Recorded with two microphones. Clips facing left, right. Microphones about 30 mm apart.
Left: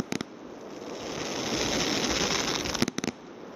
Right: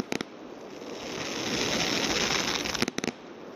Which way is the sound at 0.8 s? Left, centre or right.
Centre.